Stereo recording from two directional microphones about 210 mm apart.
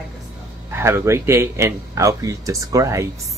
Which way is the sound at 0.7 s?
10° right (ahead or behind).